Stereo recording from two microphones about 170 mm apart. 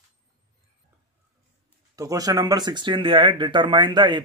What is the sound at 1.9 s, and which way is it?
Speech, 20° right (ahead or behind).